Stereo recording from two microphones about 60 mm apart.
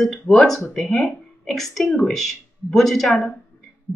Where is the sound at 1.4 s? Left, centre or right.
Centre.